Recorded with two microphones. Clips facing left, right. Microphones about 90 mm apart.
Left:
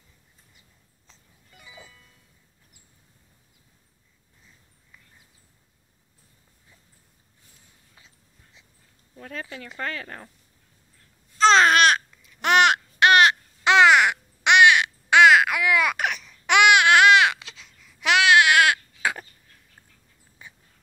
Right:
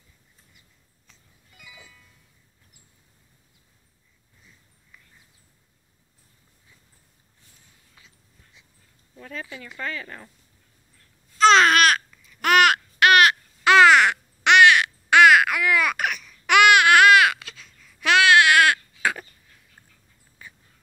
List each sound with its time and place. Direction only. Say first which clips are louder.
1.6 s music: left 2 dB; 35° left (ahead or behind)
9.2 s speech: even; 55° left (ahead or behind)
10.0 s speech: left 1 dB; 40° left (ahead or behind)
11.3 s babbling: right 1 dB; 30° left (ahead or behind)